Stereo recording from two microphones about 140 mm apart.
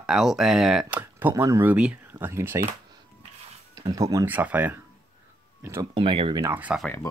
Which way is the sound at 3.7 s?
25° right (ahead or behind).